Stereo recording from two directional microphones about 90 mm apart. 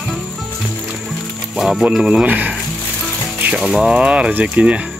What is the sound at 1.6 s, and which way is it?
Speech, 5° right (ahead or behind).